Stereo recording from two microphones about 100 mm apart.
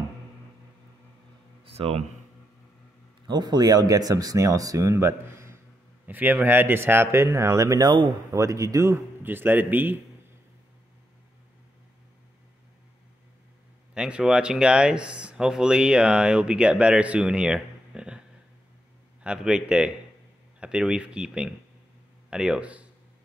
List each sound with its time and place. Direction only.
1.6 s a sound: 75° right (ahead or behind)
3.3 s speech: 45° right (ahead or behind)
8.3 s speech: 35° right (ahead or behind)
9.2 s speech: 20° right (ahead or behind)
13.9 s speech: 10° right (ahead or behind)
19.2 s speech: 5° right (ahead or behind)